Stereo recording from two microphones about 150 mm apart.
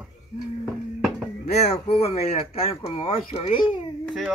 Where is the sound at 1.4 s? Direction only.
45° left (ahead or behind).